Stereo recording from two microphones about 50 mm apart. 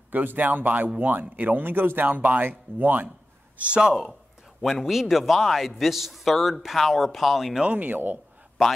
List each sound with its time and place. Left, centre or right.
0.1 s speech: right
3.5 s speech: right
4.6 s a man's voice: centre
7.6 s speech: right